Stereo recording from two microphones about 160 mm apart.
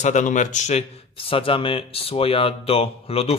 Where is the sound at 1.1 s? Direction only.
35° left (ahead or behind).